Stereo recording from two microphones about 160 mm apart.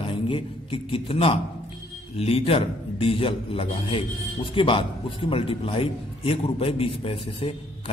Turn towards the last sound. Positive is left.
turn(degrees=35)  # may be behind; listen again after turning